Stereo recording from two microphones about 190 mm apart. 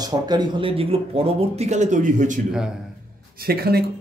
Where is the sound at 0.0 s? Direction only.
20° right (ahead or behind); by 2.4 s 40° right (ahead or behind).